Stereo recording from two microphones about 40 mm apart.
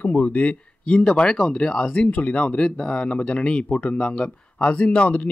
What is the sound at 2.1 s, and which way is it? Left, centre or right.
Speech, left.